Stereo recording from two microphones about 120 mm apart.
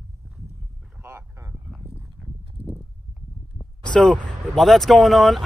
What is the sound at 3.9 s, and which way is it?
Speech, 10° left (ahead or behind).